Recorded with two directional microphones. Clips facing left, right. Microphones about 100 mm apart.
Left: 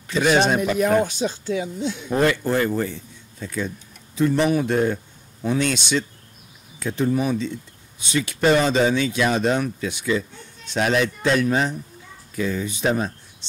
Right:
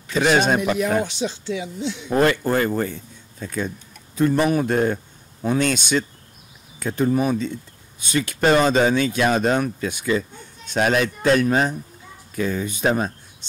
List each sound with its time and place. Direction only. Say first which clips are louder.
0.2 s speech: even; 50° right (ahead or behind)
0.7 s speech: left 2 dB; 45° left (ahead or behind)
2.1 s speech: right 2 dB; 50° right (ahead or behind)
13.4 s a sound: left 2 dB; 45° right (ahead or behind)